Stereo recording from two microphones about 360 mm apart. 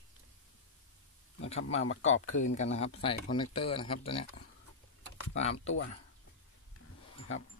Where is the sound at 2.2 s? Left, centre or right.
Left.